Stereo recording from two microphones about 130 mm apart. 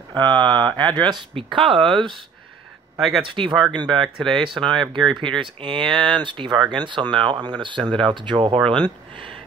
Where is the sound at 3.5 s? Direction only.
Centre (ahead or behind).